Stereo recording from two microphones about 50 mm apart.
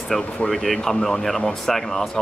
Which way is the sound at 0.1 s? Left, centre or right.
Centre.